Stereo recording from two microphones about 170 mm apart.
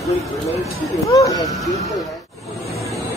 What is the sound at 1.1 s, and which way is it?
Speech, 20° left (ahead or behind).